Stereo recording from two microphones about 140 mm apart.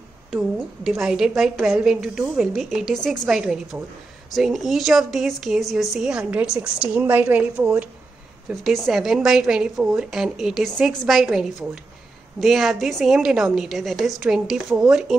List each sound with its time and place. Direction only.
0.8 s a woman's voice: 5° right (ahead or behind)
8.5 s a woman's voice: centre (ahead or behind)